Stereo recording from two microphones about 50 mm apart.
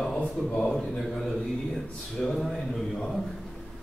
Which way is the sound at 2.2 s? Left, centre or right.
Centre.